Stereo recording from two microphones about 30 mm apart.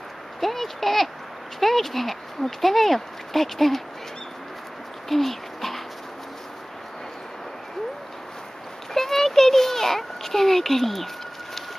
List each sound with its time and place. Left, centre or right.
0.4 s speech: centre
5.1 s speech: centre
8.9 s a sound: centre